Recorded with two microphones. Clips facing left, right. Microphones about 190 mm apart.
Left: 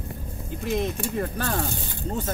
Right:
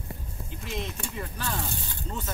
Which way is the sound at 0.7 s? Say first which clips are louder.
Left 9 dB; 45° left (ahead or behind).